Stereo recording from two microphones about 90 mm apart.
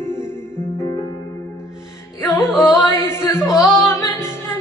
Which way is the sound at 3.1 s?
25° left (ahead or behind).